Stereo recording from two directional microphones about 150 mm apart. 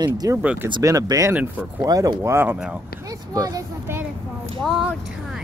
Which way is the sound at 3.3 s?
25° right (ahead or behind).